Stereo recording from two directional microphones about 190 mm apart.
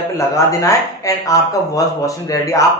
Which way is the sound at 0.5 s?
15° left (ahead or behind).